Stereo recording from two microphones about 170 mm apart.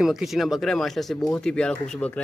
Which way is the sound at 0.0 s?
Centre (ahead or behind).